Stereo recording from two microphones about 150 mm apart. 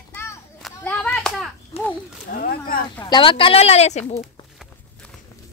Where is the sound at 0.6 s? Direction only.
Centre (ahead or behind).